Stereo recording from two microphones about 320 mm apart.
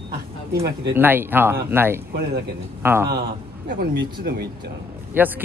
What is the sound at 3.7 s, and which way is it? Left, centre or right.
Speech, right.